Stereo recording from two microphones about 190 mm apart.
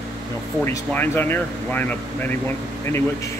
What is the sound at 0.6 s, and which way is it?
Speech, 10° left (ahead or behind).